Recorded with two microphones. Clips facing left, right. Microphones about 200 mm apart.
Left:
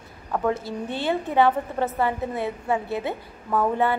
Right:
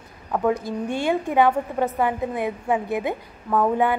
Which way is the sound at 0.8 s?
15° right (ahead or behind).